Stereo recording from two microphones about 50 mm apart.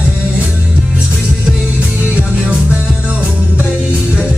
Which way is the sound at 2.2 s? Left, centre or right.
Centre.